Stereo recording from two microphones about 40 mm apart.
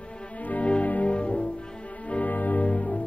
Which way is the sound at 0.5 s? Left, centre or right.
Left.